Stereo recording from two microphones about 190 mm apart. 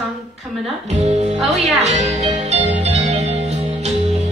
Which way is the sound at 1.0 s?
35° right (ahead or behind).